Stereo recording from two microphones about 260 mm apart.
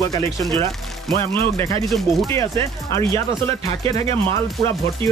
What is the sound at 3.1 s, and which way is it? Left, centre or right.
Speech, right.